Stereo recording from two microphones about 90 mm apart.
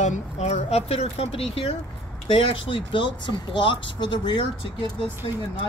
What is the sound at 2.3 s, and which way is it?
Speech, 75° left (ahead or behind).